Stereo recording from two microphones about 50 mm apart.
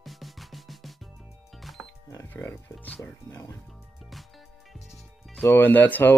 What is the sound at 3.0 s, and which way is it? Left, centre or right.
Speech, left.